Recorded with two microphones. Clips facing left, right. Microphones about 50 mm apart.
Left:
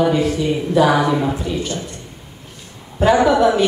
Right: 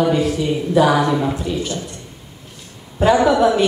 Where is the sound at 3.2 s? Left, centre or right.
Centre.